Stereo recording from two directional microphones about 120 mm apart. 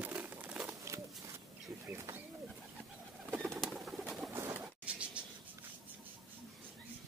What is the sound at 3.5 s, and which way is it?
Bird, 5° right (ahead or behind).